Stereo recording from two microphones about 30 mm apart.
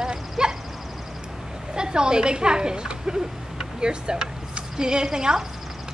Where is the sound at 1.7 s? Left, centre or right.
Right.